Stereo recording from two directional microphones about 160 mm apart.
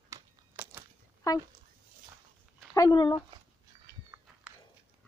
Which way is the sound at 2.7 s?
25° left (ahead or behind).